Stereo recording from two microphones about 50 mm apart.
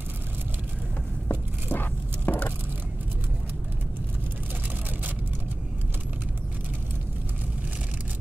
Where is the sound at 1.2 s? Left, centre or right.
Left.